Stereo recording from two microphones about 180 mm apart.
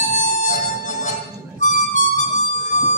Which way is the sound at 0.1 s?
45° left (ahead or behind).